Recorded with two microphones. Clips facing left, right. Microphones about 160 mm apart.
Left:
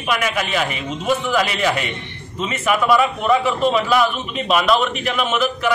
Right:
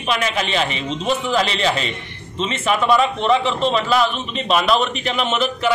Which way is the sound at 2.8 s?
5° left (ahead or behind).